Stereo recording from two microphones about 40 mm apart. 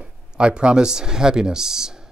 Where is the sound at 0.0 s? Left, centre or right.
Right.